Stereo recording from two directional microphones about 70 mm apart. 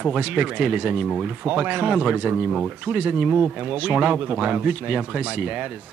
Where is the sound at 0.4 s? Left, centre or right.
Centre.